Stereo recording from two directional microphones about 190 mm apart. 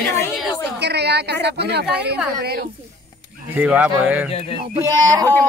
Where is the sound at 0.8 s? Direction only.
60° right (ahead or behind).